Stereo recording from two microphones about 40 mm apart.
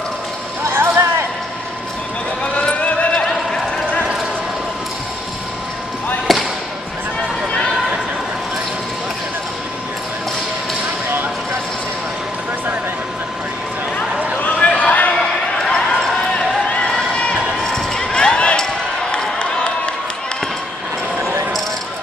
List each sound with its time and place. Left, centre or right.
0.7 s a sound: right
2.4 s run: left
6.3 s basketball bounce: centre
14.4 s run: left
15.9 s basketball bounce: centre
16.9 s crowd: centre
18.0 s basketball bounce: left
19.1 s a sound: left